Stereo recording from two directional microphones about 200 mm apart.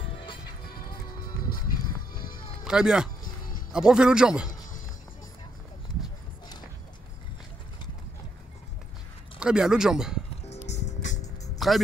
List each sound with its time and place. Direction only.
0.1 s music: 25° left (ahead or behind)
0.7 s music: 50° left (ahead or behind)
2.1 s music: 45° left (ahead or behind)
2.6 s a man's voice: 5° right (ahead or behind)
9.4 s speech: 5° right (ahead or behind)
10.5 s music: 35° left (ahead or behind)
11.5 s music: centre (ahead or behind)